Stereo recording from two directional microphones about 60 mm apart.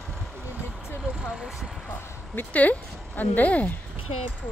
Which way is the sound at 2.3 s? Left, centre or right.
Left.